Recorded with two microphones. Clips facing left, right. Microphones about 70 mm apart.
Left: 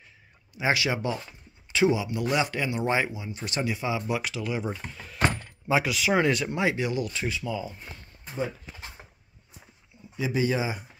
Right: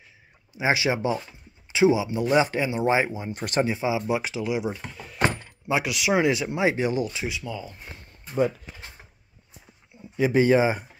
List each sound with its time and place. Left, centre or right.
0.6 s speech: right
3.1 s speech: right
3.6 s speech: right
7.1 s speech: centre
10.1 s speech: right